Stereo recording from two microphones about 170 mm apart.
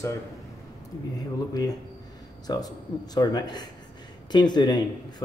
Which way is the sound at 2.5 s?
25° left (ahead or behind).